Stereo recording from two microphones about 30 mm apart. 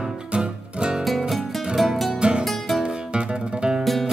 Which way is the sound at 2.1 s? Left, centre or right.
Right.